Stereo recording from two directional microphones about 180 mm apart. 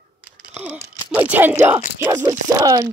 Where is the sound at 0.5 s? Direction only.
10° right (ahead or behind).